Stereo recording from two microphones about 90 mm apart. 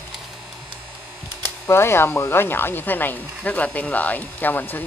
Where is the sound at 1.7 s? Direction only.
25° left (ahead or behind).